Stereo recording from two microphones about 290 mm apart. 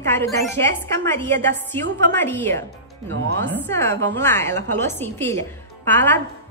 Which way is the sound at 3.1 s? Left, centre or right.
Right.